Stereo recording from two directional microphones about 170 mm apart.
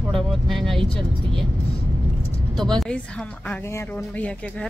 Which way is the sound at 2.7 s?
5° left (ahead or behind).